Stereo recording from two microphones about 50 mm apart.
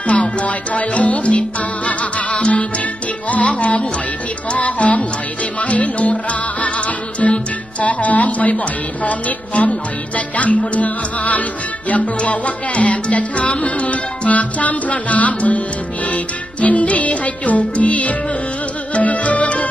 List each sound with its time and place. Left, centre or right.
0.0 s music: left
7.2 s music: centre
7.8 s music: left
9.6 s music: left
16.6 s music: left